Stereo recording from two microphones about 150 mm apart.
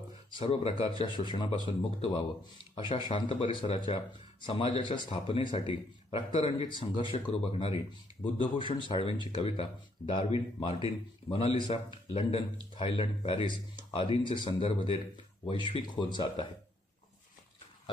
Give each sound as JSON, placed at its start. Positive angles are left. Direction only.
{"t": 0.4, "sound": "speech", "side_deg": 40}